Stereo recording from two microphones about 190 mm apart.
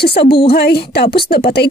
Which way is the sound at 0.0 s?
55° left (ahead or behind).